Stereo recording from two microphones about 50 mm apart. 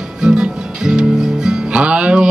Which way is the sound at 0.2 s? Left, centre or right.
Centre.